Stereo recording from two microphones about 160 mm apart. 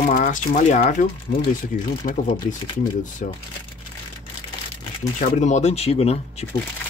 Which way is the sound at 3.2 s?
50° left (ahead or behind).